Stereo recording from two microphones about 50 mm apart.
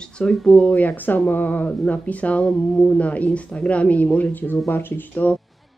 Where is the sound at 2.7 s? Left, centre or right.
Centre.